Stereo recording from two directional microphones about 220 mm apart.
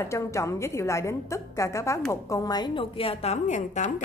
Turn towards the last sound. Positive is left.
turn(degrees=30)  # may be behind; listen again after turning